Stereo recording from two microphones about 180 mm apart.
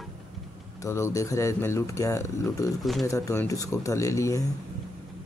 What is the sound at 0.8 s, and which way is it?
Speech, 15° left (ahead or behind).